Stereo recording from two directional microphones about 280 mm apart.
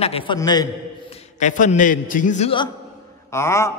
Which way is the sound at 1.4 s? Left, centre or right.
Left.